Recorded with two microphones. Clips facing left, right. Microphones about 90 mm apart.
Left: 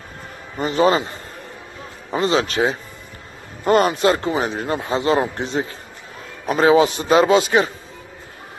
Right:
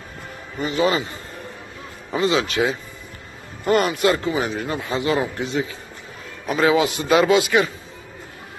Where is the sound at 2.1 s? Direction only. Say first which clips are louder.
Left 1 dB; 40° left (ahead or behind).